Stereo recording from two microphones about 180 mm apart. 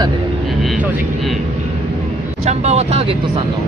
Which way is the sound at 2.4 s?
35° right (ahead or behind).